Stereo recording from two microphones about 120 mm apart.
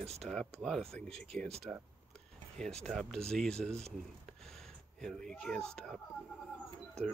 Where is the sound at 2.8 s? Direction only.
5° left (ahead or behind).